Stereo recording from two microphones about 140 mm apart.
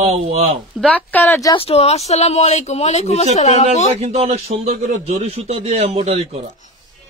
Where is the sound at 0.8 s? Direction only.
10° left (ahead or behind).